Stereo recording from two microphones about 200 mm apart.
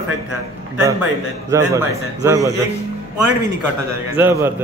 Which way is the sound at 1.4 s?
15° right (ahead or behind).